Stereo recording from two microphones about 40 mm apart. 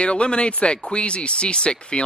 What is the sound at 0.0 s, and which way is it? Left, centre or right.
Speech, left.